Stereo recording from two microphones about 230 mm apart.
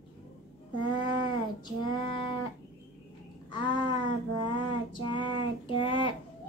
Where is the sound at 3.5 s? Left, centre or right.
Centre.